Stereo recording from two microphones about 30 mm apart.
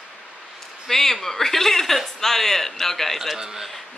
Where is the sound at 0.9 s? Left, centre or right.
Centre.